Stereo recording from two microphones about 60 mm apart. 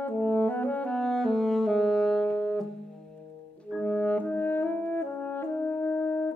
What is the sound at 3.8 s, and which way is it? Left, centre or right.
French horn, left.